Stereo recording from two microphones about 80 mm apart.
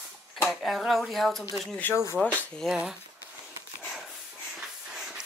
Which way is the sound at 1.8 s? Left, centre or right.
Left.